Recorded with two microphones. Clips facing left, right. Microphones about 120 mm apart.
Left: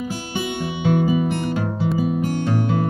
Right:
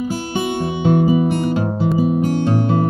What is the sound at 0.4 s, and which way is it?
Music, 40° right (ahead or behind).